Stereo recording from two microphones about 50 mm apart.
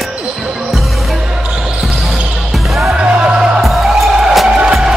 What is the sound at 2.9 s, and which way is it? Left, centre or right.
Music, right.